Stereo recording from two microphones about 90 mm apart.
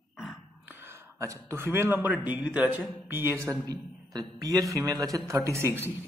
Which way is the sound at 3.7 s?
45° right (ahead or behind).